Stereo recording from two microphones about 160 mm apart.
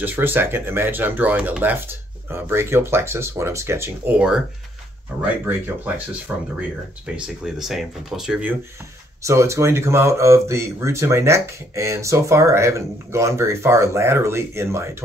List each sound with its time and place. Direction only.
0.0 s speech: 10° right (ahead or behind)
5.5 s speech: 10° right (ahead or behind)
9.2 s speech: 20° right (ahead or behind)